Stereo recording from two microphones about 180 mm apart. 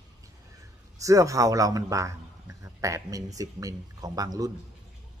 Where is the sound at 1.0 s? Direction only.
20° right (ahead or behind).